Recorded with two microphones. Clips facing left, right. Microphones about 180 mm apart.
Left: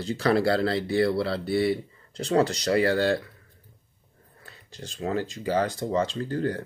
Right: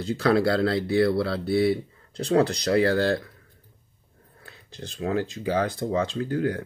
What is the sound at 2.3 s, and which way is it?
Speech, 60° right (ahead or behind).